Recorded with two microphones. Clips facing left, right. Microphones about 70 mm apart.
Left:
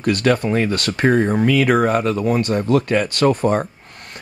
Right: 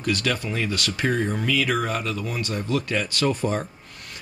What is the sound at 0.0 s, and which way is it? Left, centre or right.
Speech, left.